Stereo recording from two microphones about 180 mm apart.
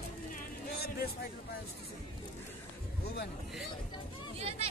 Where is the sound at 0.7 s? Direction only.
60° left (ahead or behind).